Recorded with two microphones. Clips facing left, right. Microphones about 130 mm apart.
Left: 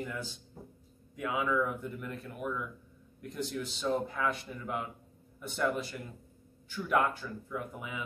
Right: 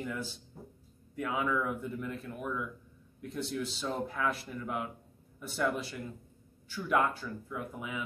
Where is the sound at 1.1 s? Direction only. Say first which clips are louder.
Even; 10° left (ahead or behind).